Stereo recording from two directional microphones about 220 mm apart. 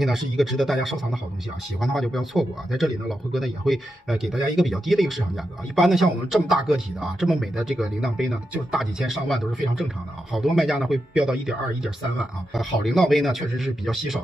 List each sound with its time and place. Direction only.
0.0 s speech: centre (ahead or behind)